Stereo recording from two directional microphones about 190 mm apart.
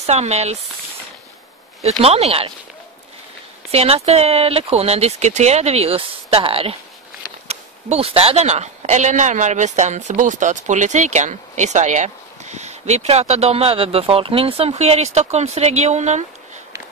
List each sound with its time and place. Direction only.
0.0 s speech: 35° right (ahead or behind)
1.8 s speech: 35° right (ahead or behind)
3.7 s speech: 30° right (ahead or behind)